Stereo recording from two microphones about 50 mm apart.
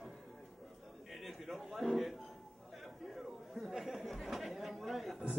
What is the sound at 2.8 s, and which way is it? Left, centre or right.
Chatter, centre.